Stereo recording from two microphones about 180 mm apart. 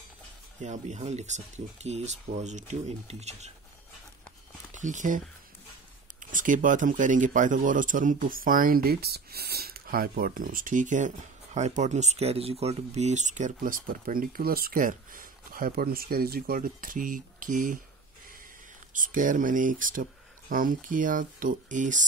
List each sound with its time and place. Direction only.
0.6 s speech: 40° right (ahead or behind)
4.7 s speech: 45° right (ahead or behind)
6.3 s speech: 45° right (ahead or behind)
18.9 s speech: 45° right (ahead or behind)